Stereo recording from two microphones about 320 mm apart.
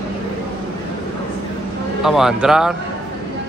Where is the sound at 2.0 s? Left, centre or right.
Centre.